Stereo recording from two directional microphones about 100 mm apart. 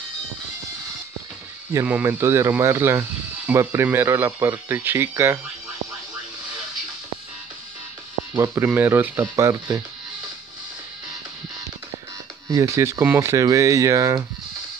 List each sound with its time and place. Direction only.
1.9 s speech: 20° right (ahead or behind)
8.4 s speech: 25° right (ahead or behind)
12.4 s speech: 35° right (ahead or behind)